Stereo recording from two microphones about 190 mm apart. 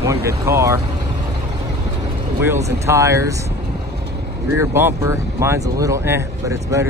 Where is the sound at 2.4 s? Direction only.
15° right (ahead or behind).